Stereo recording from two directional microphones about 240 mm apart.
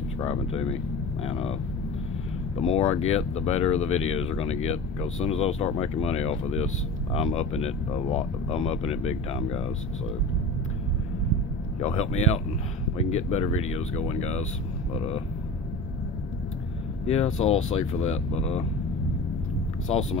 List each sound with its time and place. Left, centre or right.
0.2 s speech: left
11.8 s speech: left
17.0 s speech: left
19.9 s speech: left